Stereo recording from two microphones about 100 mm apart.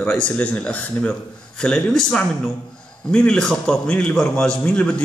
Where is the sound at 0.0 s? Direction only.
15° left (ahead or behind).